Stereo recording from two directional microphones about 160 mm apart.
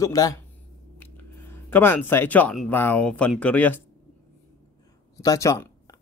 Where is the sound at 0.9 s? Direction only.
10° left (ahead or behind).